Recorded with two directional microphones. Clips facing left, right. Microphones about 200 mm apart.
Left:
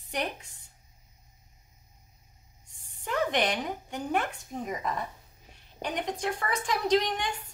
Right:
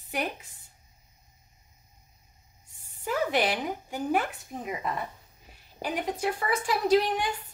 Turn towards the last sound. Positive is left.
turn(degrees=-5)  # may be behind; listen again after turning